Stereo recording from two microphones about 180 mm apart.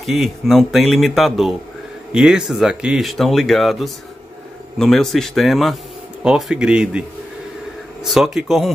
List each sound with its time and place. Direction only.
0.0 s speech: centre (ahead or behind)